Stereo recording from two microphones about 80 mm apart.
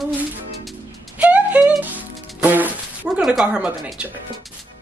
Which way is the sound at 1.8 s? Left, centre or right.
Right.